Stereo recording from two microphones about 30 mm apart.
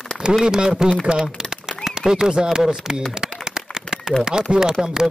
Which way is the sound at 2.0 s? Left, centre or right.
Right.